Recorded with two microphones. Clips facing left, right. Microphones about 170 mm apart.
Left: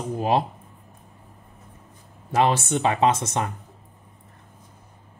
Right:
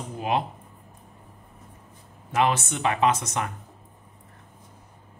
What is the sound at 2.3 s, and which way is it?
Speech, 30° left (ahead or behind).